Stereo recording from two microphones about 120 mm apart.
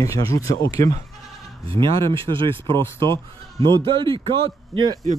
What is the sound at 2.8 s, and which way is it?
Speech, 25° left (ahead or behind).